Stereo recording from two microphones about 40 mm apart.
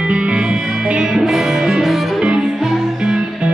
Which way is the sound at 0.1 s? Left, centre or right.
Right.